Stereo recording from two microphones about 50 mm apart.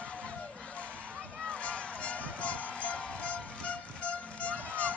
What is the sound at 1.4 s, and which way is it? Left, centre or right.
Music, left.